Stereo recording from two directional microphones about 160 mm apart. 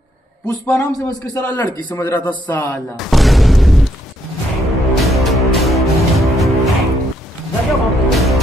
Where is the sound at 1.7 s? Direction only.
25° left (ahead or behind).